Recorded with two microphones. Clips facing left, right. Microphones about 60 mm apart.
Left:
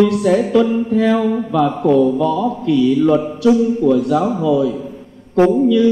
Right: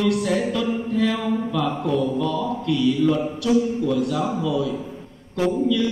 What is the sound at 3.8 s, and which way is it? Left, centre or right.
A man's voice, left.